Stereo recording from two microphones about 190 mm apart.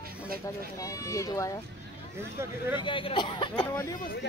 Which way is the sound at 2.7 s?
25° left (ahead or behind).